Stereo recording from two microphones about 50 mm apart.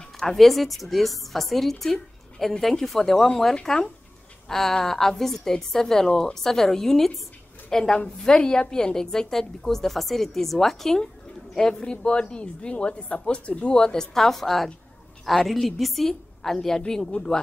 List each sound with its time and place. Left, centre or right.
0.2 s a woman's voice: centre